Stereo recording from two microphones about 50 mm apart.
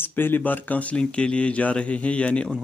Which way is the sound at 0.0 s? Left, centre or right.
Left.